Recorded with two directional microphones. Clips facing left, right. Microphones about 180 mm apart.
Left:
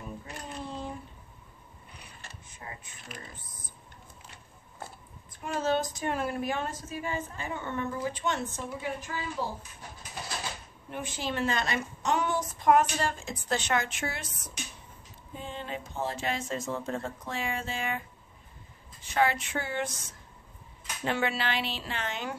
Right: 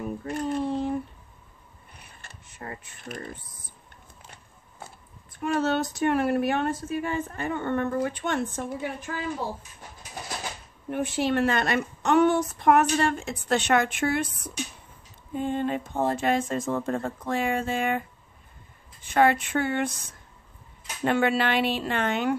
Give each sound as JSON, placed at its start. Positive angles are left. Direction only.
{"t": 0.2, "sound": "a sound", "side_deg": -55}
{"t": 2.0, "sound": "mechanisms", "side_deg": -60}
{"t": 5.4, "sound": "speech", "side_deg": -65}
{"t": 10.9, "sound": "speech", "side_deg": -60}
{"t": 19.0, "sound": "speech", "side_deg": -55}